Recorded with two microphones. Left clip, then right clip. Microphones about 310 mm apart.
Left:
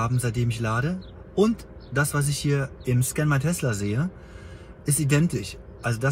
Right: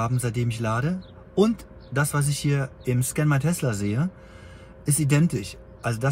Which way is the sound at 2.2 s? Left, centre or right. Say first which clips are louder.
Left 1 dB; centre.